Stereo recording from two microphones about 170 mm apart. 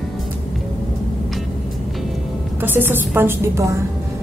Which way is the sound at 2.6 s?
10° right (ahead or behind).